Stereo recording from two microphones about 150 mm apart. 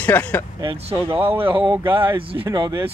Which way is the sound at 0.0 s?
10° left (ahead or behind).